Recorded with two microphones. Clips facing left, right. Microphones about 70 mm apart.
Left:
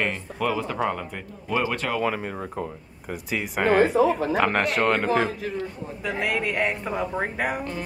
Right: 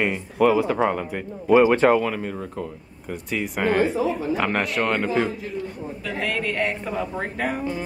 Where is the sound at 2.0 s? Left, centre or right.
Centre.